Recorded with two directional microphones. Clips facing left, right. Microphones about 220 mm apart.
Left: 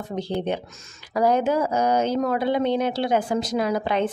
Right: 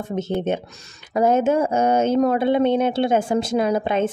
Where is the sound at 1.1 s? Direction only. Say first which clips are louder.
Right 3 dB; 25° right (ahead or behind).